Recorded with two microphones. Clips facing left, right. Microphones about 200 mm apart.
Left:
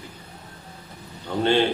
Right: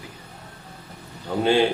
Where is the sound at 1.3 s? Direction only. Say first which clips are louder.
Right 1 dB; 5° right (ahead or behind).